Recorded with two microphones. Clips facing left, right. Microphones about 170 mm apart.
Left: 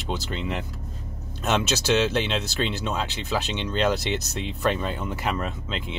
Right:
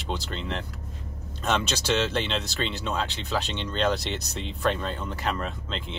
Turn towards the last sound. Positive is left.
turn(degrees=5)  # may be behind; listen again after turning